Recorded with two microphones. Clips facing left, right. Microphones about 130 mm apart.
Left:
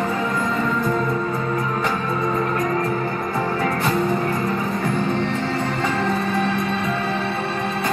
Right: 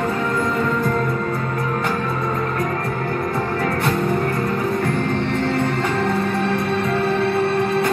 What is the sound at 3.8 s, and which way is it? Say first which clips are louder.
Music: even; centre (ahead or behind).